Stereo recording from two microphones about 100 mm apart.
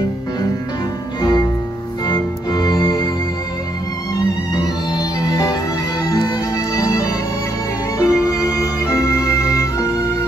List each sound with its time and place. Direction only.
1.2 s music: 40° left (ahead or behind)
4.6 s music: 40° left (ahead or behind)